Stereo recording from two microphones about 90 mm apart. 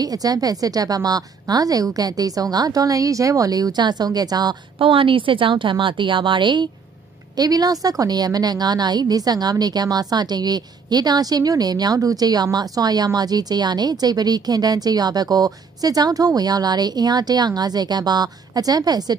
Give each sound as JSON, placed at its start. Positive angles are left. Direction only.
{"t": 0.0, "sound": "a woman's voice", "side_deg": -45}
{"t": 4.7, "sound": "a woman's voice", "side_deg": -75}
{"t": 7.3, "sound": "a woman's voice", "side_deg": -45}